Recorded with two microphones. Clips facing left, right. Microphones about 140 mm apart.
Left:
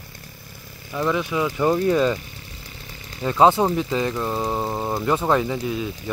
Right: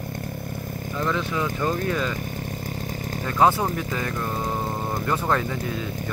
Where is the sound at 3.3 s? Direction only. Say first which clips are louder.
Left 4 dB; 20° left (ahead or behind).